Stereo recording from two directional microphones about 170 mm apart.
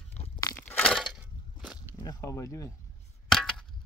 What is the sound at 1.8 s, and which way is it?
Speech, 25° left (ahead or behind).